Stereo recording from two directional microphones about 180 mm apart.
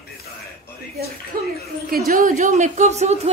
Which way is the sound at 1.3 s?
55° right (ahead or behind).